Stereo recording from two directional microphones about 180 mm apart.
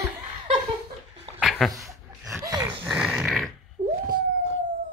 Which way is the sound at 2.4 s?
20° right (ahead or behind).